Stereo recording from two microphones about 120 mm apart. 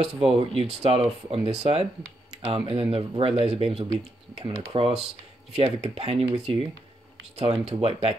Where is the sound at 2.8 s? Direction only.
50° right (ahead or behind).